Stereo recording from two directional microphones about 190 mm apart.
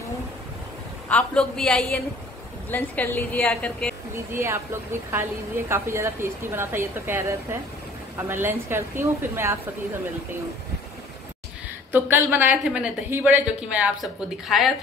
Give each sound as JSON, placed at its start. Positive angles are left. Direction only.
{"t": 1.0, "sound": "a man's voice", "side_deg": 5}
{"t": 4.3, "sound": "speech", "side_deg": -15}
{"t": 5.7, "sound": "speech", "side_deg": -15}
{"t": 11.9, "sound": "speech", "side_deg": -10}